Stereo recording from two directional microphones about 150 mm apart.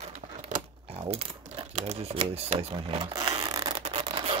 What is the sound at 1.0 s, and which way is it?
Speech, 40° right (ahead or behind).